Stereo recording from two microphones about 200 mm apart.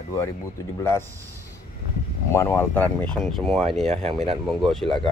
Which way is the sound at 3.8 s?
35° right (ahead or behind).